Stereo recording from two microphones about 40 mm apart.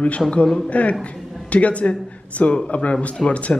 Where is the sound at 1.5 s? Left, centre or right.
Left.